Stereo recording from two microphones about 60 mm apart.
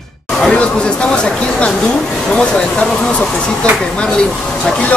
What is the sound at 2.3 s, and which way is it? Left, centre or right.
Speech, centre.